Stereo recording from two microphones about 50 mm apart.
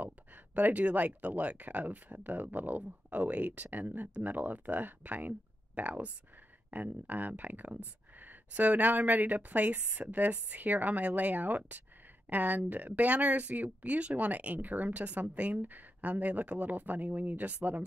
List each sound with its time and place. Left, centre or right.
0.0 s speech: right